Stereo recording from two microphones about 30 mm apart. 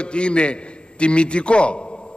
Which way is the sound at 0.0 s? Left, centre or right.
Left.